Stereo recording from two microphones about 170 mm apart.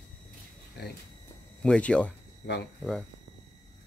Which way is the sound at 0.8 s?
70° left (ahead or behind).